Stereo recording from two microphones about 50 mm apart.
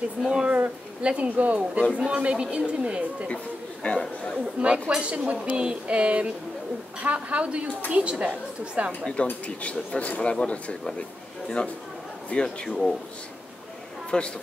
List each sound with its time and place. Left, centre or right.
0.2 s speech: centre
3.8 s speech: centre
4.6 s speech: right
9.2 s speech: left
12.6 s speech: centre
14.1 s speech: centre